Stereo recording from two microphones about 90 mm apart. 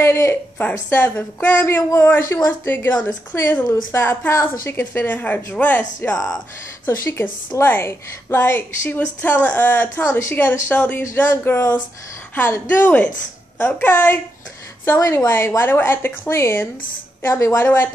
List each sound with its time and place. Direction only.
0.0 s a woman's voice: 30° left (ahead or behind)